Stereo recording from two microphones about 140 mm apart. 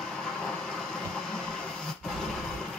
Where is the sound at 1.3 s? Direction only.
5° left (ahead or behind).